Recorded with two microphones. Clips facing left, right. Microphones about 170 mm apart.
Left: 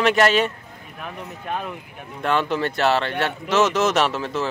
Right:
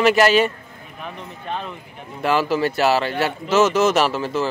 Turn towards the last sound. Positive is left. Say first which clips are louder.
# right 2 dB
turn(degrees=0)  # may be behind; listen again after turning